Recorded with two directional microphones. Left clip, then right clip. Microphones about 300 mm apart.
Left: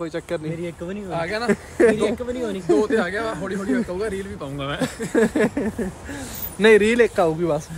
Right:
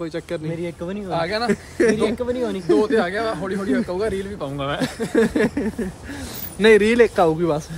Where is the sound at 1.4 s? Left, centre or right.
Centre.